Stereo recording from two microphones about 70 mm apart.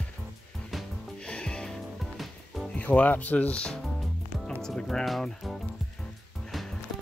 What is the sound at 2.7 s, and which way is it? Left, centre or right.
Speech, left.